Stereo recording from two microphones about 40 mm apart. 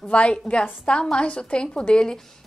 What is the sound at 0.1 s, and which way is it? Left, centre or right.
A woman's voice, left.